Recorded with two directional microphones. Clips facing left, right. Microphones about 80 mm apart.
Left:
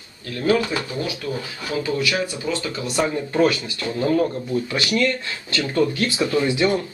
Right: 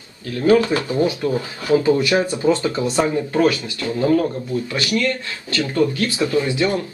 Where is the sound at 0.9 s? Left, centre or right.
Right.